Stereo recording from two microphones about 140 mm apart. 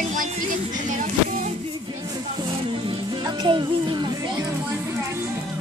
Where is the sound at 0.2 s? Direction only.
65° right (ahead or behind).